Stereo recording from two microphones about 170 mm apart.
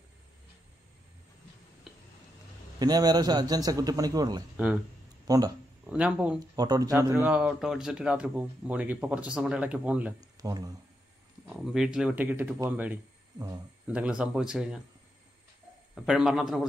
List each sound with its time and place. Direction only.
2.8 s a man's voice: 25° right (ahead or behind)
4.6 s speech: 10° right (ahead or behind)
5.2 s speech: 25° right (ahead or behind)
5.9 s speech: 5° right (ahead or behind)
6.5 s a man's voice: 20° right (ahead or behind)
7.2 s speech: 5° right (ahead or behind)
10.4 s a man's voice: 20° right (ahead or behind)
11.4 s speech: 5° right (ahead or behind)
15.9 s speech: 5° right (ahead or behind)